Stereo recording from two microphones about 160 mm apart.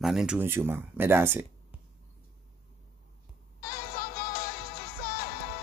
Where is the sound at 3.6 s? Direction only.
65° left (ahead or behind).